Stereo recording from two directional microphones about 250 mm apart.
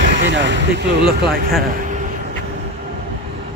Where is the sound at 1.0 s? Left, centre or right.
Centre.